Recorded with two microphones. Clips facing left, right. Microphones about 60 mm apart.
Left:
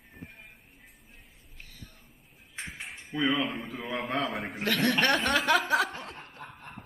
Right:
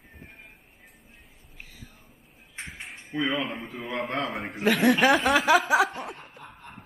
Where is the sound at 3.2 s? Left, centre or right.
Right.